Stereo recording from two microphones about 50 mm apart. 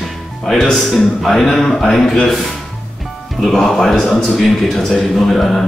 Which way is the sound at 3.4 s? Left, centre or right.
Centre.